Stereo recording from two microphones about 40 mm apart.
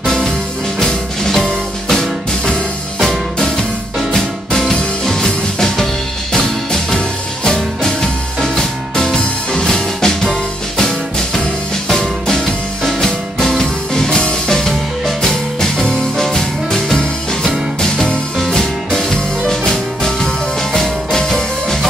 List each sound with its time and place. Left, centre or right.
0.0 s music: centre
17.7 s music: left
18.5 s music: centre